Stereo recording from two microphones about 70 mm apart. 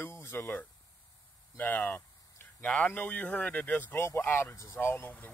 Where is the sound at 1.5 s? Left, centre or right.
Left.